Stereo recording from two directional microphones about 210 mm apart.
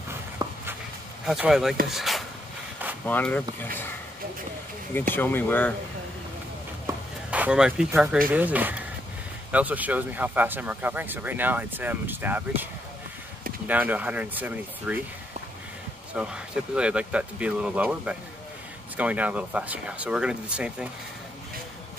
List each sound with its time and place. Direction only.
0.4 s walk: 20° right (ahead or behind)
1.2 s speech: centre (ahead or behind)
1.9 s a sound: centre (ahead or behind)
3.1 s speech: 5° left (ahead or behind)
5.1 s speech: 10° left (ahead or behind)
7.2 s speech: 5° right (ahead or behind)
13.7 s speech: 5° right (ahead or behind)
16.1 s speech: 5° right (ahead or behind)